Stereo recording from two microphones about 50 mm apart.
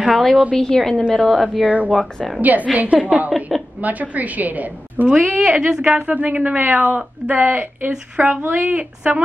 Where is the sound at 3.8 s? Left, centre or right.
Right.